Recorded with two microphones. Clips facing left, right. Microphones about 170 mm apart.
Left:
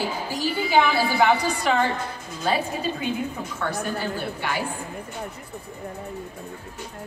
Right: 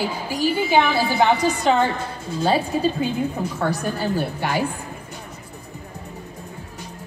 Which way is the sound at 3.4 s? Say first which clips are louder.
Right 6 dB; 40° right (ahead or behind).